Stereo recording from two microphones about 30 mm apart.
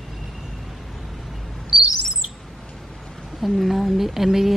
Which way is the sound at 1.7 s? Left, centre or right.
Centre.